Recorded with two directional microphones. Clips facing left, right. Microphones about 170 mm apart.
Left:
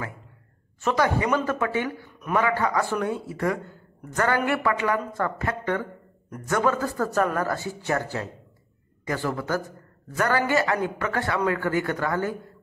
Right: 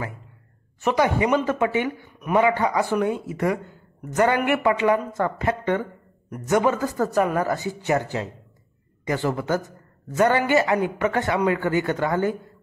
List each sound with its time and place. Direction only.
0.7 s a man's voice: 15° right (ahead or behind)